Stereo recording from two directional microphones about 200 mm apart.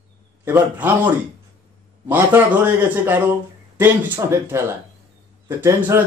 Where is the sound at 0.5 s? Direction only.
10° right (ahead or behind).